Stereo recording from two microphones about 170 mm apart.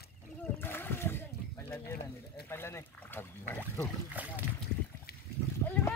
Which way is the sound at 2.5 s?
15° left (ahead or behind).